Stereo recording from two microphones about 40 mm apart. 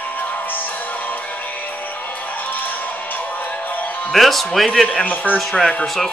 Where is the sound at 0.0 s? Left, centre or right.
Left.